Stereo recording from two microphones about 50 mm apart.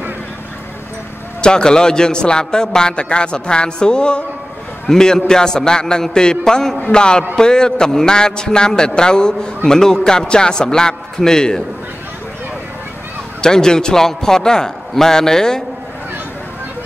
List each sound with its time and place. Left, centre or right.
1.4 s a man's voice: centre
13.4 s a man's voice: centre